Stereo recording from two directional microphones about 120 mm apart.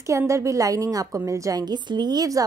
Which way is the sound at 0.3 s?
25° right (ahead or behind).